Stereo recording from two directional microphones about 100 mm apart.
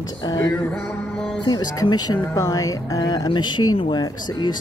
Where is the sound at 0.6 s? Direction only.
10° left (ahead or behind).